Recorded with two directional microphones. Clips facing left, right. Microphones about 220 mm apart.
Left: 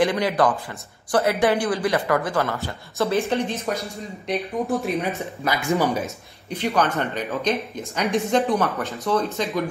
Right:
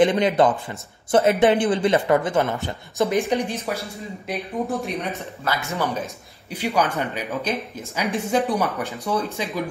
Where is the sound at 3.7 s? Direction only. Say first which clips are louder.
Left 1 dB; 15° left (ahead or behind).